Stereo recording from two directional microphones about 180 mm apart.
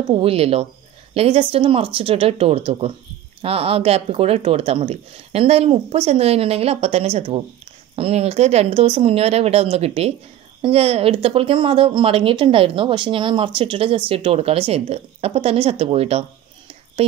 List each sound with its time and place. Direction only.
0.1 s speech: 35° right (ahead or behind)